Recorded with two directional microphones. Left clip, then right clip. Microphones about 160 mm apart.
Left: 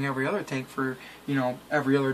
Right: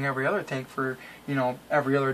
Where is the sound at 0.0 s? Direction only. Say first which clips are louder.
Right 2 dB; 10° right (ahead or behind).